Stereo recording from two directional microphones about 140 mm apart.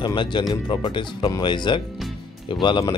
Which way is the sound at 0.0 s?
35° left (ahead or behind).